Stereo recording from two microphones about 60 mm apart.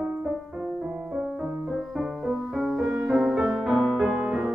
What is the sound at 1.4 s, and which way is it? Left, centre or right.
Music, centre.